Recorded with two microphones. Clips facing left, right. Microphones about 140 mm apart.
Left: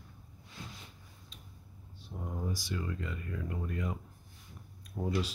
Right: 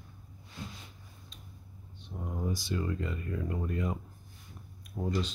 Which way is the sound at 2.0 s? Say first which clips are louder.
Right 2 dB; centre (ahead or behind).